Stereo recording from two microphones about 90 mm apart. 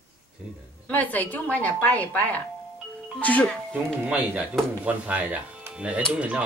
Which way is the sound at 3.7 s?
15° right (ahead or behind).